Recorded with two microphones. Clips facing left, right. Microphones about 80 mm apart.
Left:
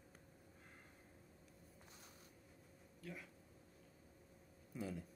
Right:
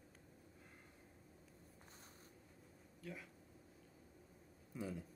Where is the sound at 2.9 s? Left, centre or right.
Centre.